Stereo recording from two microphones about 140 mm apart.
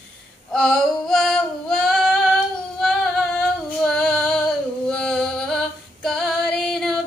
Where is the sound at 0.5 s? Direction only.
5° left (ahead or behind).